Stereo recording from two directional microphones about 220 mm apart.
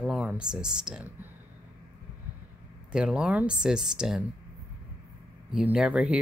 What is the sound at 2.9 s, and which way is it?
Speech, 5° right (ahead or behind).